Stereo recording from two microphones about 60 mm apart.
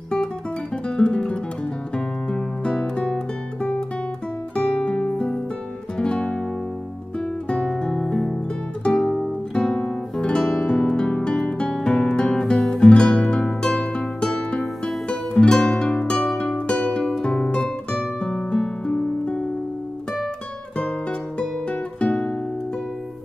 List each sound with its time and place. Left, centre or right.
0.8 s guitar: centre
2.0 s music: centre
4.6 s music: centre
7.4 s music: centre
8.8 s guitar: centre
11.4 s music: centre
21.4 s guitar: centre